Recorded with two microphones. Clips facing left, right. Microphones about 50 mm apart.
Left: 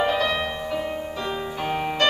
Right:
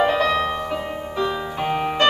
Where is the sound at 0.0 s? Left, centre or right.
Centre.